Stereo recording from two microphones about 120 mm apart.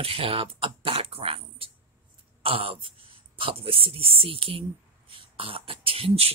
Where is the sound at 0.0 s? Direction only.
50° right (ahead or behind).